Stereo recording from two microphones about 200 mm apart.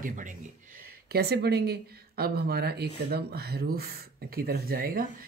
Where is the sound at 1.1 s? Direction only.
55° right (ahead or behind).